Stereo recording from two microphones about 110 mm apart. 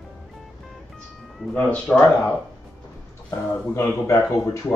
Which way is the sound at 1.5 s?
15° left (ahead or behind).